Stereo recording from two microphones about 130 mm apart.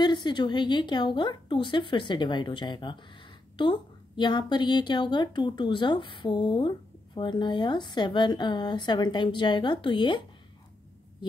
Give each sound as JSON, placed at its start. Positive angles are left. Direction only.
{"t": 0.0, "sound": "speech", "side_deg": 35}